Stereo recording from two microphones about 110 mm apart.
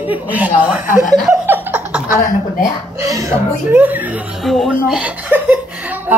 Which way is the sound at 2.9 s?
30° right (ahead or behind).